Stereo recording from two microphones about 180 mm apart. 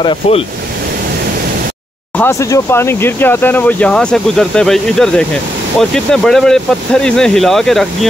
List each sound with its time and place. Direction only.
0.0 s speech: 30° left (ahead or behind)
2.1 s speech: 15° left (ahead or behind)